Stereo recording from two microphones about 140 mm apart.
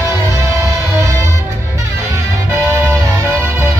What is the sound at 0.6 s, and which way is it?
Music, 20° right (ahead or behind).